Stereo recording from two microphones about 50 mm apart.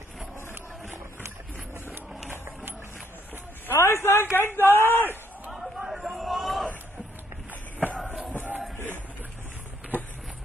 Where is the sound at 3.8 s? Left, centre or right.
Left.